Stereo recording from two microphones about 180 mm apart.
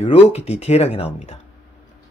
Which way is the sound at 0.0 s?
35° left (ahead or behind).